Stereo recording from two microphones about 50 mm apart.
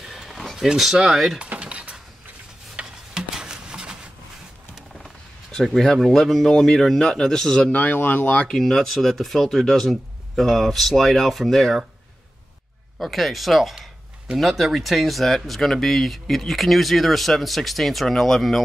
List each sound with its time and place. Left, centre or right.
0.0 s a sound: centre
0.9 s speech: centre
1.4 s music: right
2.7 s a sound: centre
5.5 s a man's voice: centre
7.9 s speech: left
8.4 s speech: centre
13.0 s speech: centre